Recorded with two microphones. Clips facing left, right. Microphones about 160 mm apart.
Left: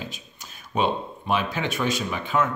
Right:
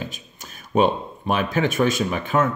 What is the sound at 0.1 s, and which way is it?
Speech, 50° right (ahead or behind).